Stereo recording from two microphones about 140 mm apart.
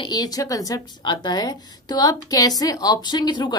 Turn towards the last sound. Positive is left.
turn(degrees=30)  # may be behind; listen again after turning